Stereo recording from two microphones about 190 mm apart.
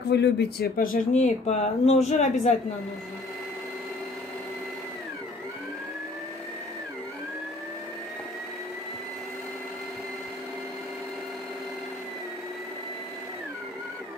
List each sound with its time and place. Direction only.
0.1 s speech: 60° left (ahead or behind); by 2.5 s 40° left (ahead or behind)